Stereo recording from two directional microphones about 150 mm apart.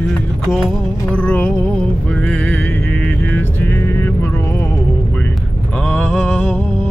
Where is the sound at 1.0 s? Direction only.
10° left (ahead or behind).